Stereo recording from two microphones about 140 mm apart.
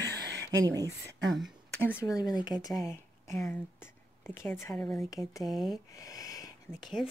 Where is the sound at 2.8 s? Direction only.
20° left (ahead or behind); by 5.8 s centre (ahead or behind).